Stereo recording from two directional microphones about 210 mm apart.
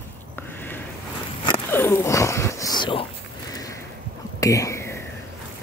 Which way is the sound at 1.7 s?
10° left (ahead or behind).